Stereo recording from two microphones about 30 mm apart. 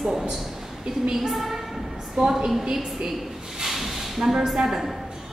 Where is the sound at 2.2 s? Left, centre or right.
Right.